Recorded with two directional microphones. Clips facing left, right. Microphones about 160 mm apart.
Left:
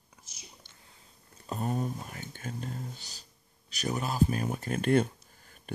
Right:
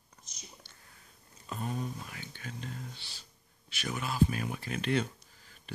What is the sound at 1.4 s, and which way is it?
Speech, 40° left (ahead or behind).